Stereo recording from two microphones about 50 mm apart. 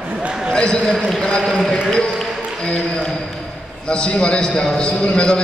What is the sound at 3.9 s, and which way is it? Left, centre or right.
A man's voice, centre.